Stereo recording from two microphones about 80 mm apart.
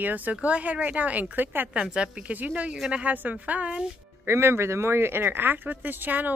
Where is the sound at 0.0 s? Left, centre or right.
Right.